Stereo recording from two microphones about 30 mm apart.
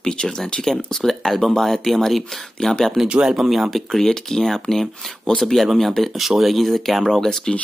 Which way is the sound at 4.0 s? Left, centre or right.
Centre.